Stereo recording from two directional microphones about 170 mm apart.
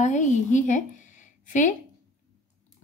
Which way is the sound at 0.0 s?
45° left (ahead or behind).